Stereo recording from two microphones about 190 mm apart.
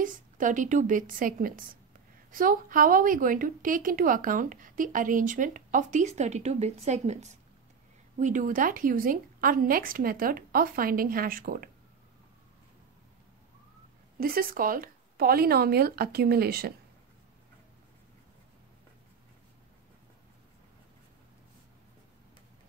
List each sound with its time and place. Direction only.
0.0 s a woman's voice: 45° right (ahead or behind)
14.2 s a woman's voice: 50° right (ahead or behind)